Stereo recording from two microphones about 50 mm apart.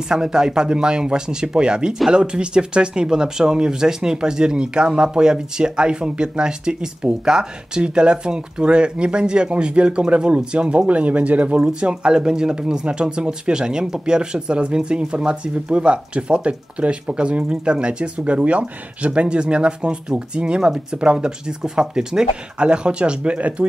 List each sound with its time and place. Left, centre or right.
0.1 s speech: centre